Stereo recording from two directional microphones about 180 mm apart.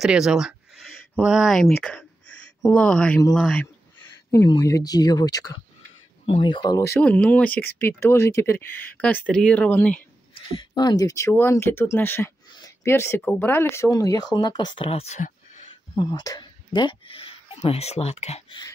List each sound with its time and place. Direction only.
0.0 s speech: 5° right (ahead or behind)
4.0 s speech: 25° left (ahead or behind)
10.3 s speech: 25° left (ahead or behind)
15.9 s speech: 25° left (ahead or behind)